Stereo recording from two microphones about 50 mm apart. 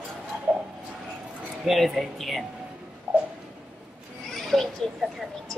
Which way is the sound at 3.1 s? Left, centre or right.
Right.